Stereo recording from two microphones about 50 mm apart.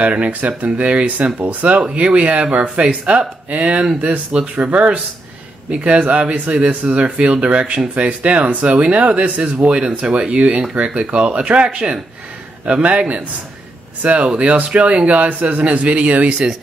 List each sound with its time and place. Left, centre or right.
0.0 s speech: right